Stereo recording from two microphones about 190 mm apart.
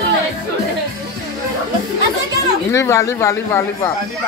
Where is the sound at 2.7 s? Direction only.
15° left (ahead or behind).